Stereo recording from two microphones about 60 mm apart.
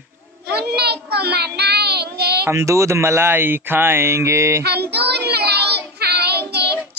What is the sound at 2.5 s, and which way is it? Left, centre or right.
Speech, right.